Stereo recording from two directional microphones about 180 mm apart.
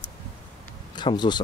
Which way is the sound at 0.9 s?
25° left (ahead or behind).